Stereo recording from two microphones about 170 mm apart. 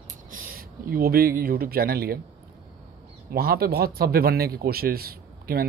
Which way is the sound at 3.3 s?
65° right (ahead or behind).